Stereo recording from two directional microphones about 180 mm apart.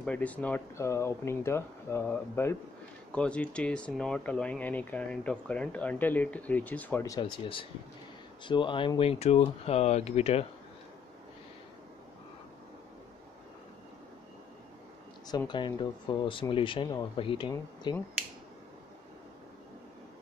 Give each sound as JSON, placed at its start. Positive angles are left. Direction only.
{"t": 0.0, "sound": "speech", "side_deg": 10}
{"t": 8.5, "sound": "speech", "side_deg": 25}
{"t": 15.2, "sound": "speech", "side_deg": 25}